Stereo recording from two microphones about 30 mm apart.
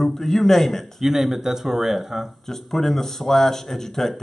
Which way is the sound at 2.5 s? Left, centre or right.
Centre.